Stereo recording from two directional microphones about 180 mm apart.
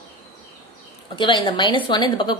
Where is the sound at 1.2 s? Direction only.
25° left (ahead or behind).